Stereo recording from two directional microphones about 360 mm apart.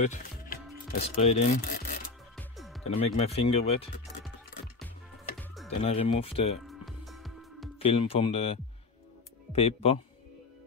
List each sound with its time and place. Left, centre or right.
0.0 s music: left
0.9 s speech: centre
2.3 s music: centre
2.8 s speech: centre
5.8 s speech: centre
6.6 s music: centre
7.8 s speech: centre